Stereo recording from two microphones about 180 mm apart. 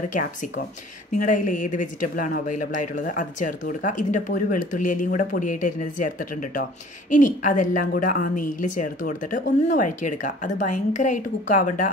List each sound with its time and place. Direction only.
1.1 s a woman's voice: 45° left (ahead or behind)